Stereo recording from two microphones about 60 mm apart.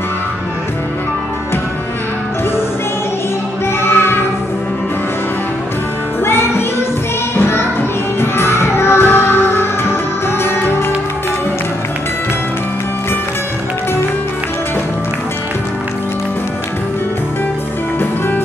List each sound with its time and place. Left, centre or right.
3.8 s music: left
6.2 s music: left